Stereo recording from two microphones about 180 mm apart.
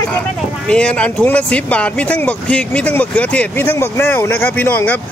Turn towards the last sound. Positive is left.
turn(degrees=10)  # may be behind; listen again after turning